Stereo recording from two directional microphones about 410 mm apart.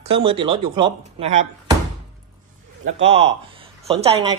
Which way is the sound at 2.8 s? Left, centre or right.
Right.